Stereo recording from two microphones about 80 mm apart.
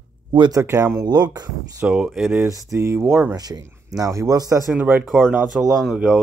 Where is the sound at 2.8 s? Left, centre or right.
Right.